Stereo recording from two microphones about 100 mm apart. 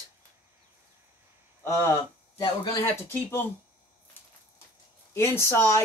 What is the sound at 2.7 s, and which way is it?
Speech, 25° left (ahead or behind).